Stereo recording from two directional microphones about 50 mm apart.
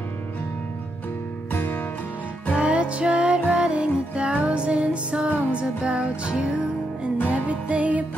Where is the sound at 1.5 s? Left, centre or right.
Left.